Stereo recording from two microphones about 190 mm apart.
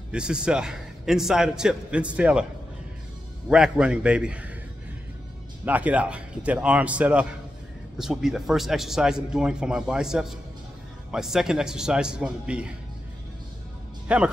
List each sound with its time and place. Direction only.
0.1 s a man's voice: 5° right (ahead or behind)
3.4 s a man's voice: 5° right (ahead or behind)
5.7 s a man's voice: 10° right (ahead or behind)
14.0 s speech: 5° right (ahead or behind)